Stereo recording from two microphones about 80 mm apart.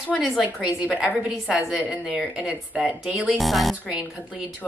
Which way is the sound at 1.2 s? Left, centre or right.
Centre.